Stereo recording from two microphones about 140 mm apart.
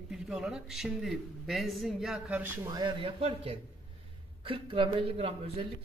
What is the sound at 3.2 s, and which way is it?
A man's voice, 45° right (ahead or behind).